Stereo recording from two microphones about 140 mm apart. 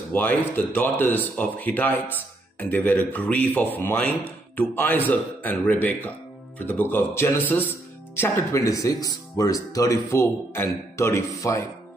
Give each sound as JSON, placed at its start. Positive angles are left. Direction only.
{"t": 0.1, "sound": "speech", "side_deg": 10}